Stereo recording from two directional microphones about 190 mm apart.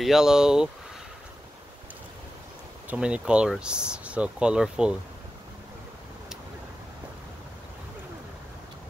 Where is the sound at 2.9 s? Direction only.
5° right (ahead or behind).